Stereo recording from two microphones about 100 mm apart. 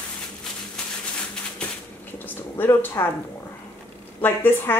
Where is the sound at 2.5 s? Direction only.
30° left (ahead or behind).